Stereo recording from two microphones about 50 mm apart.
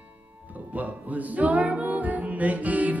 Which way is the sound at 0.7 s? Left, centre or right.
Right.